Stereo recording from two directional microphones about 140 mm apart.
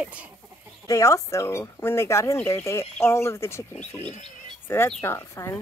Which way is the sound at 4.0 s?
50° left (ahead or behind).